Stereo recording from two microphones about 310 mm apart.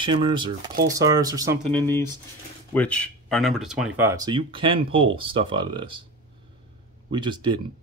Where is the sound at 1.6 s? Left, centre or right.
Centre.